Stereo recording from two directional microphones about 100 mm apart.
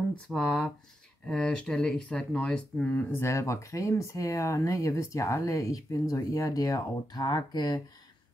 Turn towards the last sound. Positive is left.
turn(degrees=45)  # may be behind; listen again after turning